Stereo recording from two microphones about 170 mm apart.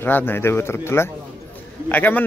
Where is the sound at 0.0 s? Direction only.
10° left (ahead or behind).